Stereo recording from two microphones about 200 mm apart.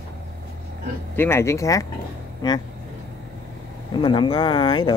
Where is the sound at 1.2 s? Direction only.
15° left (ahead or behind).